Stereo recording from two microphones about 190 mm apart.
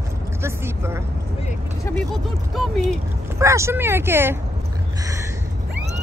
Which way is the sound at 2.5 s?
Centre (ahead or behind).